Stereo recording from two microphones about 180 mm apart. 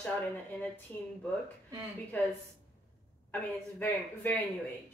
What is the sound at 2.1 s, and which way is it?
Speech, 10° left (ahead or behind).